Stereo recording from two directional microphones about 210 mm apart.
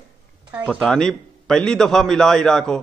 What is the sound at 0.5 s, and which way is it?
A man's voice, 5° right (ahead or behind).